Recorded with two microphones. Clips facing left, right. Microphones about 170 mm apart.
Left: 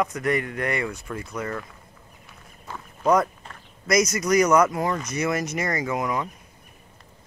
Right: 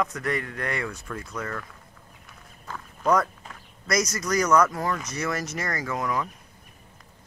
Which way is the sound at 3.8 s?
15° left (ahead or behind).